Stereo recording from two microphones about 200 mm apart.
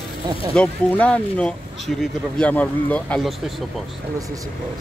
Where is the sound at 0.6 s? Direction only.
5° left (ahead or behind).